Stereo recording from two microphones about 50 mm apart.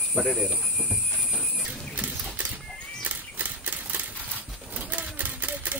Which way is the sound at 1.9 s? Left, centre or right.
Right.